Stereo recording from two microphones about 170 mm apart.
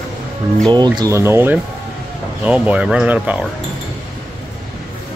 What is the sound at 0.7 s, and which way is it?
Speech, 25° right (ahead or behind).